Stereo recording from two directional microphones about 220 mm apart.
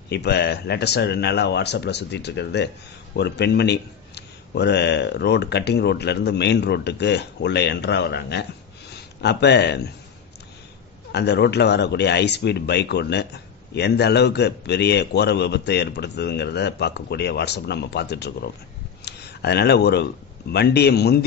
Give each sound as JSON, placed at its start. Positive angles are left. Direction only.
{"t": 0.1, "sound": "speech", "side_deg": 50}
{"t": 11.1, "sound": "speech", "side_deg": 50}